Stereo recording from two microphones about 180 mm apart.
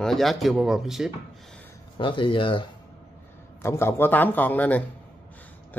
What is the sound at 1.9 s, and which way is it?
Speech, 25° left (ahead or behind).